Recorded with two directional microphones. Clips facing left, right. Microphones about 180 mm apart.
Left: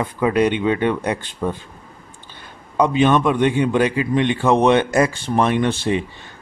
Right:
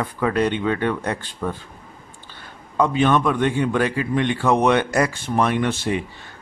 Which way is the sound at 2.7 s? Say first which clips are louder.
Left 2 dB; 20° left (ahead or behind).